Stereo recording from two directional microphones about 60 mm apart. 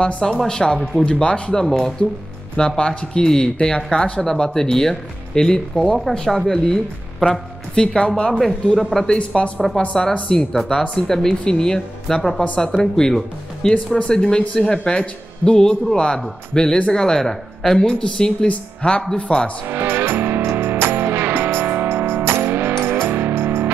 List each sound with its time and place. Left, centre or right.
0.2 s speech: centre
8.3 s a man's voice: centre
8.9 s speech: centre
19.7 s music: right